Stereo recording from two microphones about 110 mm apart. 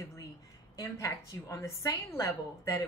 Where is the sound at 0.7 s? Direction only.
30° left (ahead or behind).